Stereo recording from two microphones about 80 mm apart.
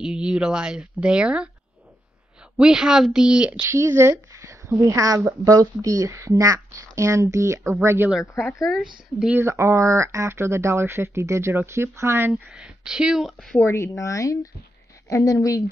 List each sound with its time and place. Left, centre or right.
0.0 s speech: centre
2.5 s speech: centre
3.6 s speech: right
9.4 s speech: right
12.3 s speech: centre
13.7 s speech: left